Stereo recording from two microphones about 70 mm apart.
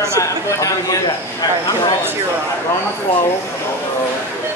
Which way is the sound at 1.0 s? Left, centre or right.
Left.